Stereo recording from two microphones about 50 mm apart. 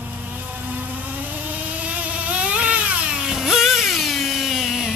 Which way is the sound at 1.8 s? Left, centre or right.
Right.